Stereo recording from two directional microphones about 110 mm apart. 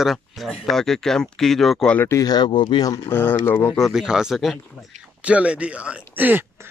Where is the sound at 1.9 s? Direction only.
25° left (ahead or behind).